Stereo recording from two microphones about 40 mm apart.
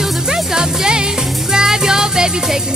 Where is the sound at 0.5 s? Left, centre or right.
Centre.